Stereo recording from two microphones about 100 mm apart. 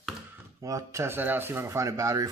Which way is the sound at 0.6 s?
35° right (ahead or behind).